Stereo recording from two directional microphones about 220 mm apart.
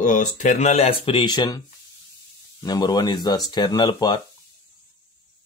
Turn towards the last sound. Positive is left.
turn(degrees=20)  # may be behind; listen again after turning